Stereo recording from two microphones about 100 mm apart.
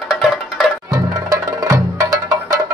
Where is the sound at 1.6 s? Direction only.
40° right (ahead or behind).